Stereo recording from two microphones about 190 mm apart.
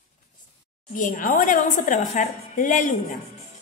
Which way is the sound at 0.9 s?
45° left (ahead or behind).